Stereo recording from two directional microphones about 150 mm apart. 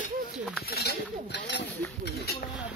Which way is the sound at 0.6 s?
90° left.